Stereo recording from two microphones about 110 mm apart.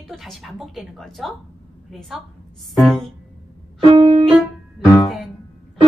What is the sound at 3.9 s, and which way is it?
Music, 60° right (ahead or behind).